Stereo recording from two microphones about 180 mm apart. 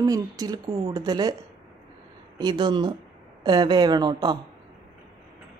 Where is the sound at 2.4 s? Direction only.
25° right (ahead or behind).